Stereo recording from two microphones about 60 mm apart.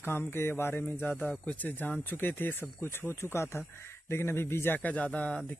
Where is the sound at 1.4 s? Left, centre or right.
Left.